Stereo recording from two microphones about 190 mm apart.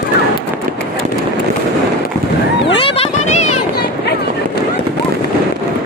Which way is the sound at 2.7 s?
30° left (ahead or behind).